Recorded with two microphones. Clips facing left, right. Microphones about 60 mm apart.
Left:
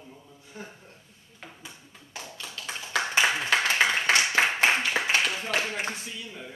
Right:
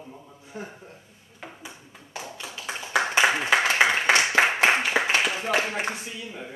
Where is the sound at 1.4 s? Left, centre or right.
Right.